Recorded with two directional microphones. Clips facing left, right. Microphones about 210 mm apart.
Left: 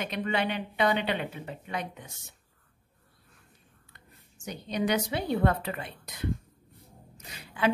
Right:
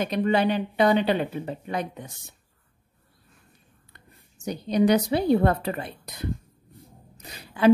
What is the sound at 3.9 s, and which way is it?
A woman's voice, 35° right (ahead or behind).